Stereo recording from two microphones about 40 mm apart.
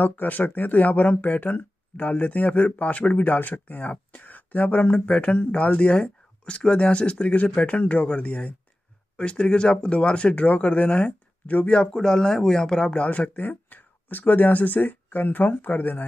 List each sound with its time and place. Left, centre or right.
0.0 s speech: left
0.4 s speech: left
11.8 s speech: centre
13.0 s speech: left